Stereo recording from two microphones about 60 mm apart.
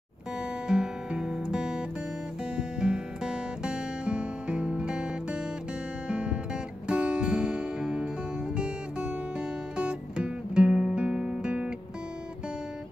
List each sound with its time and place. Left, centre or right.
0.4 s guitar: centre
2.5 s music: centre
6.0 s guitar: centre